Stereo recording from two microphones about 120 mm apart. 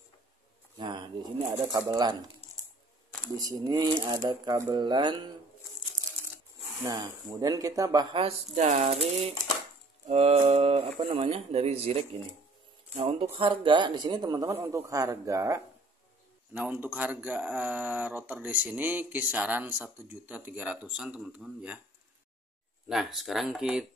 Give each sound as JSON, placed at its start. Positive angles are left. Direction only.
{"t": 0.7, "sound": "speech", "side_deg": -40}
{"t": 3.3, "sound": "speech", "side_deg": -30}
{"t": 6.8, "sound": "speech", "side_deg": -30}
{"t": 8.5, "sound": "a sound", "side_deg": -75}
{"t": 10.0, "sound": "speech", "side_deg": -60}
{"t": 13.2, "sound": "speech", "side_deg": -45}
{"t": 14.5, "sound": "a man's voice", "side_deg": -20}
{"t": 16.5, "sound": "speech", "side_deg": -10}
{"t": 22.8, "sound": "speech", "side_deg": 0}